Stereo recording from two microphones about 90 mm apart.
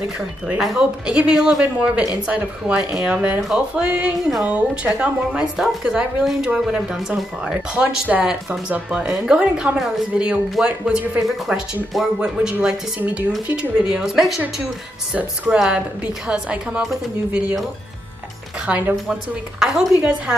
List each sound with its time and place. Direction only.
0.6 s a woman's voice: 5° right (ahead or behind)
9.4 s speech: 15° right (ahead or behind)
15.1 s speech: 15° right (ahead or behind)
18.7 s speech: 10° right (ahead or behind)